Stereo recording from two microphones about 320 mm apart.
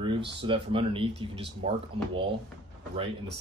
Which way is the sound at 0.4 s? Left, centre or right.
Centre.